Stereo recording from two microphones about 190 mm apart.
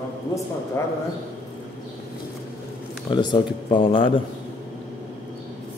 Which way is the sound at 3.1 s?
25° left (ahead or behind).